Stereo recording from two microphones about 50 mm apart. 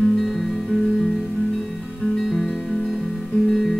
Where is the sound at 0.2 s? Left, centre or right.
Centre.